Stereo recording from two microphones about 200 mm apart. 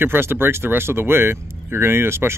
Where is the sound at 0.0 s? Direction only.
10° right (ahead or behind).